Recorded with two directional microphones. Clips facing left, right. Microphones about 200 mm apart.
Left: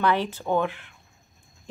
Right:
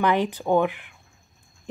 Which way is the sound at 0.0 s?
15° right (ahead or behind).